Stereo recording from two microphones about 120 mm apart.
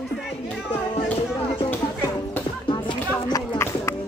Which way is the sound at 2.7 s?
45° left (ahead or behind).